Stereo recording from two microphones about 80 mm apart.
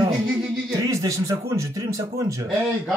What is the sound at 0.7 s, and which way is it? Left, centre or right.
Speech, right.